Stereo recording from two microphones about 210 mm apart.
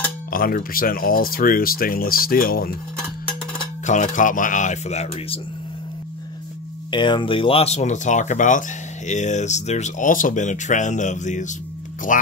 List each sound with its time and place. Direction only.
0.3 s speech: 45° left (ahead or behind)
3.8 s speech: 35° left (ahead or behind)
6.9 s speech: 20° left (ahead or behind); by 12.2 s 40° left (ahead or behind)